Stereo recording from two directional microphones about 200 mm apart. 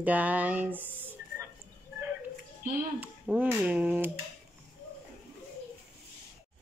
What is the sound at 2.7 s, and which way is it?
Speech, 5° right (ahead or behind).